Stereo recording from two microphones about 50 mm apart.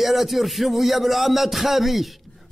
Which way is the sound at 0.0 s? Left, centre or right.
Centre.